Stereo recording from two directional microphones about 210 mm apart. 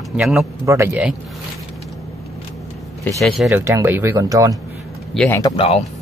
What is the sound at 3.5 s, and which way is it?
Speech, 10° right (ahead or behind).